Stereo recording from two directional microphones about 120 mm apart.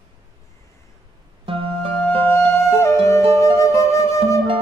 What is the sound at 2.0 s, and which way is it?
Music, 15° left (ahead or behind).